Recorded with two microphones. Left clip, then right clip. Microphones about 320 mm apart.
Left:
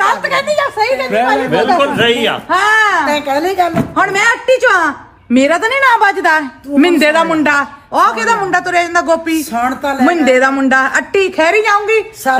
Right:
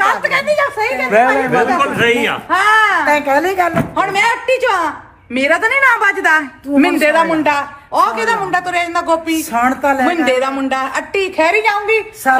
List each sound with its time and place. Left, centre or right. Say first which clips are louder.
0.0 s a sound: left 1 dB; left
1.7 s a woman's voice: left 2 dB; left
3.1 s a woman's voice: right 1 dB; centre
3.9 s a woman's voice: left 2 dB; left
9.5 s a woman's voice: right 5 dB; centre
10.0 s a woman's voice: left 4 dB; left